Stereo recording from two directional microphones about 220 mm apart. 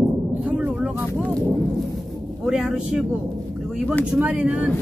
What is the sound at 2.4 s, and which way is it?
Speech, centre (ahead or behind).